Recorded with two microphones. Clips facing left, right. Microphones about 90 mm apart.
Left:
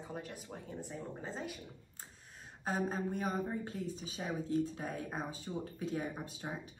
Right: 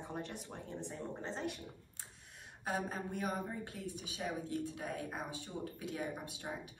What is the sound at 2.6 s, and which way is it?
Speech, 30° left (ahead or behind).